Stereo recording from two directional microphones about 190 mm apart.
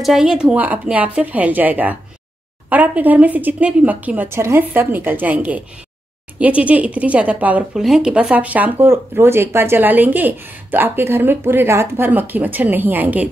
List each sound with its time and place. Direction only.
0.0 s speech: centre (ahead or behind)